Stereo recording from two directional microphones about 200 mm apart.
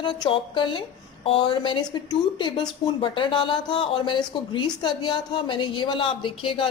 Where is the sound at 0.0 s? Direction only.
25° left (ahead or behind).